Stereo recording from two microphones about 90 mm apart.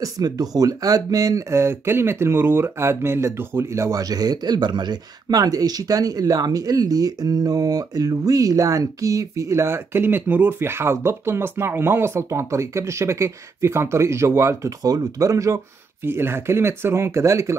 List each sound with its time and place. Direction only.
0.0 s speech: 45° right (ahead or behind)